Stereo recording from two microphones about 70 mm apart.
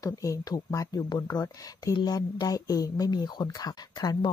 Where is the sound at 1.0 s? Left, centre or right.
Left.